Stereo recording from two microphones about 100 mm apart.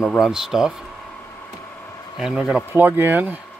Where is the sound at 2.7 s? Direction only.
20° right (ahead or behind).